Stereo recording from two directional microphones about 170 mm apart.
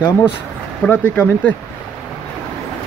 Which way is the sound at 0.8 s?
10° left (ahead or behind).